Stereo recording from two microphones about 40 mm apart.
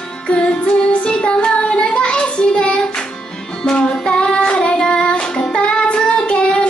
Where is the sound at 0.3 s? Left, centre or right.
Left.